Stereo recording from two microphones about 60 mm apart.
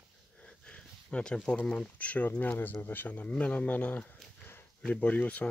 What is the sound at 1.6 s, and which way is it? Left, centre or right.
Speech, centre.